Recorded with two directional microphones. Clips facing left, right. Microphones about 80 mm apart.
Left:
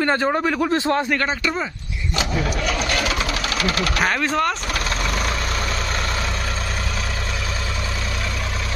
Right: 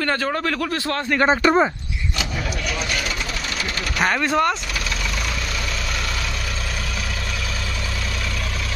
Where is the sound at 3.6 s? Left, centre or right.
Left.